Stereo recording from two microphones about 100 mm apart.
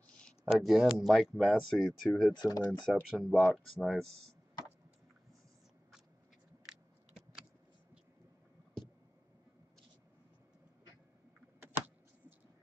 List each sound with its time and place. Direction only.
0.0 s a sound: 10° left (ahead or behind)
0.5 s speech: centre (ahead or behind)
2.3 s speech: 40° left (ahead or behind)
3.0 s speech: 10° right (ahead or behind)
3.7 s speech: 5° left (ahead or behind)